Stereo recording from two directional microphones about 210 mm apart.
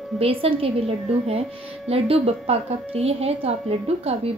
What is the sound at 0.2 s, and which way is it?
Speech, 25° right (ahead or behind).